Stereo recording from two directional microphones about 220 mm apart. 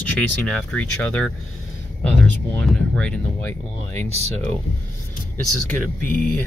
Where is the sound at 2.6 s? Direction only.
5° left (ahead or behind).